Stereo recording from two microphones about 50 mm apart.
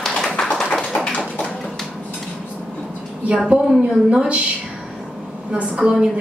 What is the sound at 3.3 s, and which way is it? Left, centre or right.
A woman's voice, centre.